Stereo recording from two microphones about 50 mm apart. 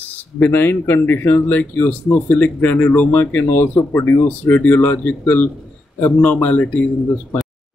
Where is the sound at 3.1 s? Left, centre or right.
Left.